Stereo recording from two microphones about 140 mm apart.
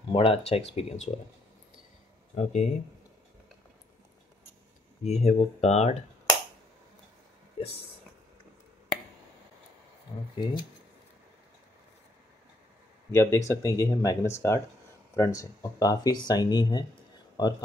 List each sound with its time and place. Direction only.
0.1 s speech: 45° left (ahead or behind)
2.3 s speech: 55° left (ahead or behind)
5.0 s speech: 50° left (ahead or behind)
7.6 s a sound: 40° left (ahead or behind)
10.3 s speech: 35° left (ahead or behind)
13.1 s speech: 20° left (ahead or behind)